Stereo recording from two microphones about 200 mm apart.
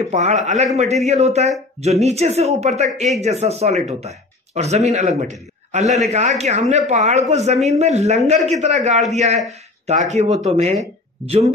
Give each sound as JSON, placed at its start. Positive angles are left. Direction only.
{"t": 0.0, "sound": "a man's voice", "side_deg": -35}